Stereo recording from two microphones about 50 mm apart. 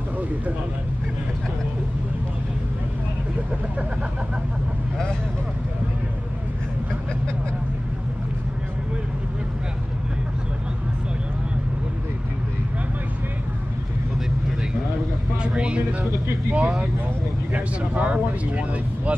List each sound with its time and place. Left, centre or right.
15.4 s vehicle: centre
16.5 s speech: centre
17.5 s speech: right